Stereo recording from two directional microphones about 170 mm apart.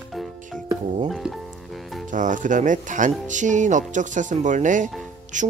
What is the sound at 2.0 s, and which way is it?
Speech, 50° right (ahead or behind).